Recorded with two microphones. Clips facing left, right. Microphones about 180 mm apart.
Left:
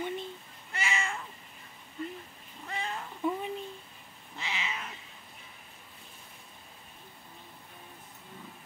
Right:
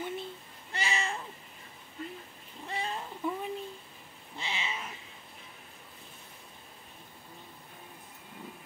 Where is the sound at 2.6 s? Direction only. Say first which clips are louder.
Right 1 dB; 30° right (ahead or behind).